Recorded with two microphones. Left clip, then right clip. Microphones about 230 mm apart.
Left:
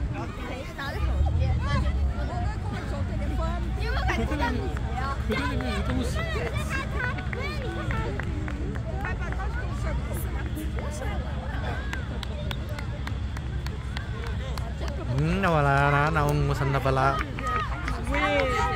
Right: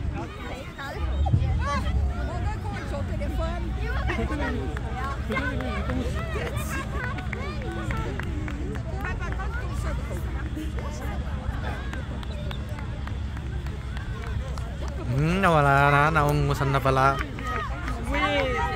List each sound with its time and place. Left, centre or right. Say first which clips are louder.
1.6 s vehicle: right 4 dB; right
3.8 s hubbub: left 2 dB; left
5.3 s speech: right 1 dB; left
15.1 s speech: right 4 dB; centre
18.1 s a sound: even; right